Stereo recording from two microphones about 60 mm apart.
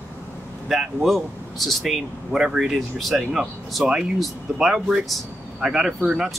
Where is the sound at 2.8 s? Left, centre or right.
Centre.